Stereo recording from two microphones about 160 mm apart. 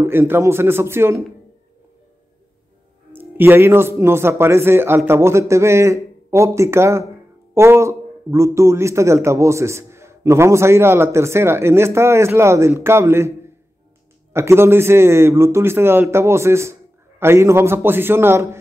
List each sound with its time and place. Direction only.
0.0 s a man's voice: 15° right (ahead or behind)
3.1 s a man's voice: 15° right (ahead or behind)